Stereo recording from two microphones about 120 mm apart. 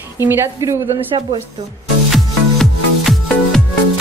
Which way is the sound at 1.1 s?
35° right (ahead or behind).